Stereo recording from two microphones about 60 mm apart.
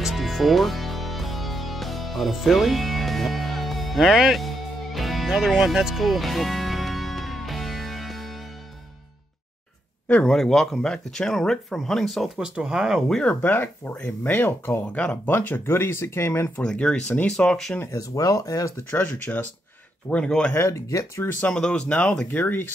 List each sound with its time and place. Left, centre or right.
0.0 s music: centre
10.2 s speech: centre
12.4 s speech: centre
13.2 s speech: left
16.7 s speech: centre
17.9 s speech: left
18.9 s speech: left
20.2 s speech: centre
20.5 s speech: left
21.5 s speech: centre
22.3 s speech: left